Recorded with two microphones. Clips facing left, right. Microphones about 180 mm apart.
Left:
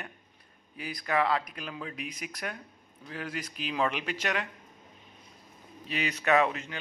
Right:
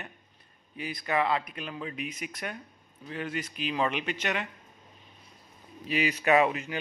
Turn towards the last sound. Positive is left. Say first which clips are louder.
# right 2 dB
turn(degrees=-10)  # may be behind; listen again after turning